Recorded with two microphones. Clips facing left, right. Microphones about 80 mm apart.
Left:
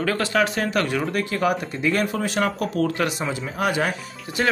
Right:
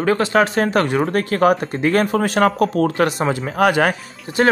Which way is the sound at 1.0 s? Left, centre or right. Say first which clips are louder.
Right 7 dB; right.